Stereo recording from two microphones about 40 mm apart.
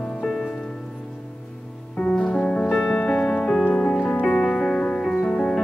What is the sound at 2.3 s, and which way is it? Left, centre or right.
Music, left.